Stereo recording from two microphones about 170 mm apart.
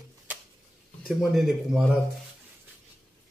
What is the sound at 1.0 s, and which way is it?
Speech, centre (ahead or behind).